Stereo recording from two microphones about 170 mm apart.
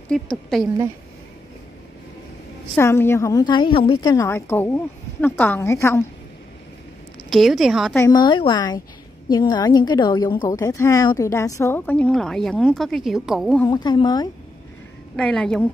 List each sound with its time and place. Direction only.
0.1 s a woman's voice: centre (ahead or behind)
2.7 s a woman's voice: 15° left (ahead or behind)
7.2 s a woman's voice: centre (ahead or behind)
7.9 s a woman's voice: 20° left (ahead or behind); by 13.6 s centre (ahead or behind)
13.7 s speech: 25° left (ahead or behind)
15.1 s a woman's voice: 5° left (ahead or behind)